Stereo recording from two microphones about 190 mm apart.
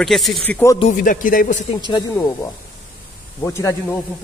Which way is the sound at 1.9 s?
25° left (ahead or behind).